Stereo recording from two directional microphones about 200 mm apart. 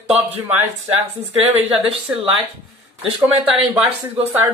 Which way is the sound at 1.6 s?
30° right (ahead or behind).